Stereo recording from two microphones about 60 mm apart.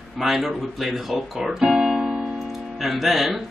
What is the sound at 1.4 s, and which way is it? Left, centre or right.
Keyboard, centre.